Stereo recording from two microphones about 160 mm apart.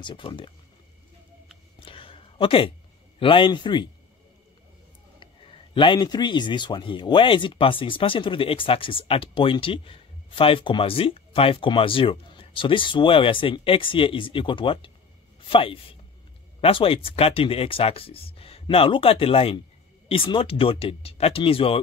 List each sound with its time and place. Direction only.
0.0 s a man's voice: 30° left (ahead or behind)
1.8 s a sound: 35° left (ahead or behind)
3.2 s a man's voice: 35° left (ahead or behind)
5.2 s a man's voice: 35° left (ahead or behind)